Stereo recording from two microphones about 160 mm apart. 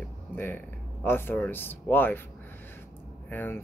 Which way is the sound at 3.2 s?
15° left (ahead or behind).